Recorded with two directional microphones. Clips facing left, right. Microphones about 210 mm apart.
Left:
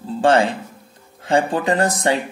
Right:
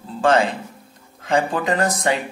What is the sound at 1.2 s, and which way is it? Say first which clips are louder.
Speech: left 2 dB; 30° left (ahead or behind).